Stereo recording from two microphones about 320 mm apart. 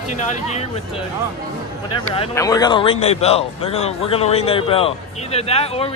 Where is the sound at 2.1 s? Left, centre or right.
Centre.